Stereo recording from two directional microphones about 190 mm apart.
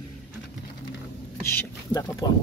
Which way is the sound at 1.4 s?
15° left (ahead or behind).